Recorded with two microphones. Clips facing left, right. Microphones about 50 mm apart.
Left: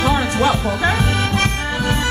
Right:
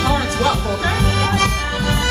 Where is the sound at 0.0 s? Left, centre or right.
Left.